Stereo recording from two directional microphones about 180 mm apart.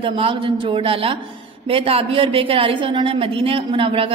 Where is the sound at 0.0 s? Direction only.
30° right (ahead or behind).